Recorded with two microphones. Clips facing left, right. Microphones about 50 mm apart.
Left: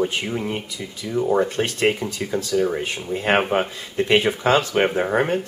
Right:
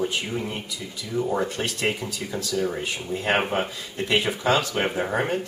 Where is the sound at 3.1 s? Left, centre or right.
Left.